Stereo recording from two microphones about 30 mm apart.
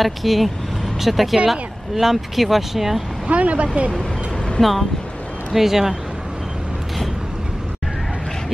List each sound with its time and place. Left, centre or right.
0.0 s speech: centre
3.3 s speech: right
4.6 s speech: centre
5.5 s speech: centre